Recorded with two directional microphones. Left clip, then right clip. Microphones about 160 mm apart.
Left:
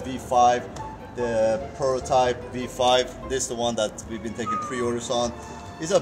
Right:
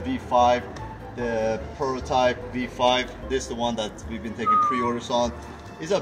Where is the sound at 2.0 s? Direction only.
40° left (ahead or behind).